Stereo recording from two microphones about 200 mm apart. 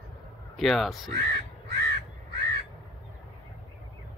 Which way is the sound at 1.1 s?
55° right (ahead or behind).